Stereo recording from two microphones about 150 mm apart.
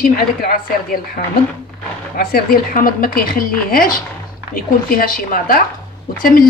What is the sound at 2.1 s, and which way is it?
A woman's voice, 80° left.